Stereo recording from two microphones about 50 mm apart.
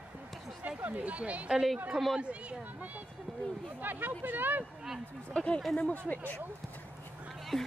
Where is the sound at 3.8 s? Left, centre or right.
Right.